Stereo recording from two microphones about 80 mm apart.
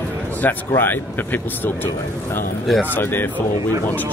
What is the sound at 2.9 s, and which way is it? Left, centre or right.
Speech, left.